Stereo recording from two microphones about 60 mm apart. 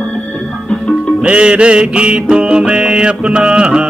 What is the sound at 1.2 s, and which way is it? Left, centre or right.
Music, centre.